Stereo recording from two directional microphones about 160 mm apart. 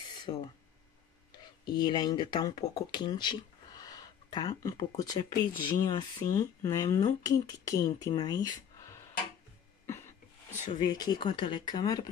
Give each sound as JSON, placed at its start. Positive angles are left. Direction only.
{"t": 0.2, "sound": "a sound", "side_deg": 25}
{"t": 1.8, "sound": "speech", "side_deg": 25}
{"t": 10.7, "sound": "speech", "side_deg": 25}